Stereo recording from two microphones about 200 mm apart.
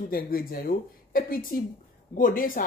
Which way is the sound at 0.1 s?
45° left (ahead or behind).